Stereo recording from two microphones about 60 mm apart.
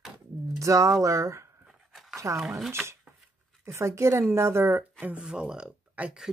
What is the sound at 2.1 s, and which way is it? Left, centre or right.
Speech, right.